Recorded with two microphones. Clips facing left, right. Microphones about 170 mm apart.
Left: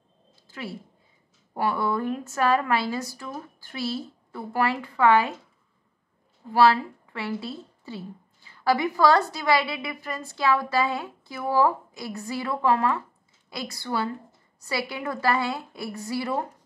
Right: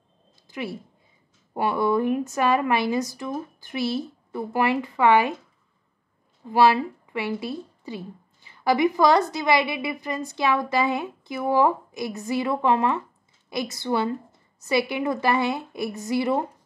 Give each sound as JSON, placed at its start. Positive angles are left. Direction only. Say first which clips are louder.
{"t": 0.5, "sound": "a woman's voice", "louder": "right 4 dB", "side_deg": -20}
{"t": 6.5, "sound": "a woman's voice", "louder": "right 1 dB", "side_deg": -15}